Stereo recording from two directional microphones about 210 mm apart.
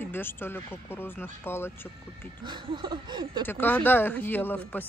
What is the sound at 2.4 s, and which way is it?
Speech, 20° right (ahead or behind).